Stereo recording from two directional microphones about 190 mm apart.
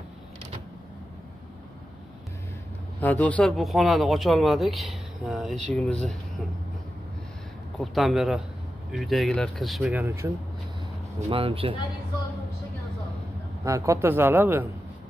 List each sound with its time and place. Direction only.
3.0 s speech: 10° left (ahead or behind)
7.8 s speech: centre (ahead or behind)
11.2 s speech: 30° right (ahead or behind)
13.7 s a man's voice: 15° right (ahead or behind)